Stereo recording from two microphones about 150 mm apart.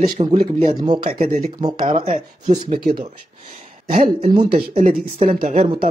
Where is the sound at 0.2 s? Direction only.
40° right (ahead or behind).